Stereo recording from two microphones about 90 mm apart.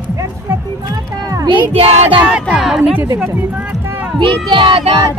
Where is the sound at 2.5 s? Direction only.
5° right (ahead or behind).